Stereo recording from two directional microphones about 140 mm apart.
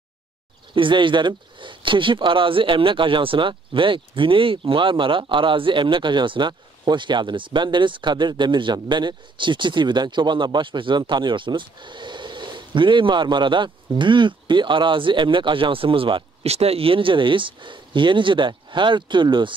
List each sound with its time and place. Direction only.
0.7 s speech: 35° right (ahead or behind)